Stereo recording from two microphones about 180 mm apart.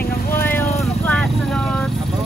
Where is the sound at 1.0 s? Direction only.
5° left (ahead or behind).